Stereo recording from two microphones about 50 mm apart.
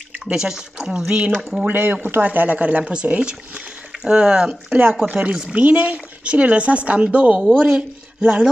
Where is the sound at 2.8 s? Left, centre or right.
Right.